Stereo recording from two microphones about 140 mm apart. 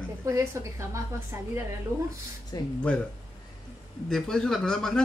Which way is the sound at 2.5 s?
25° left (ahead or behind).